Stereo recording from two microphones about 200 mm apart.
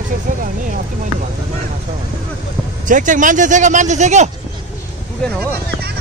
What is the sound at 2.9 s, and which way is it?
Speech, 40° right (ahead or behind).